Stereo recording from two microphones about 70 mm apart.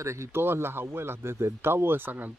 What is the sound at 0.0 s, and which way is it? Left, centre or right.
Speech, right.